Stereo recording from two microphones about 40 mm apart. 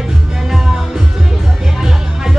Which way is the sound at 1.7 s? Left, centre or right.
Centre.